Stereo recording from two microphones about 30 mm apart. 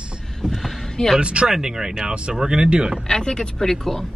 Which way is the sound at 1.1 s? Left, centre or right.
Right.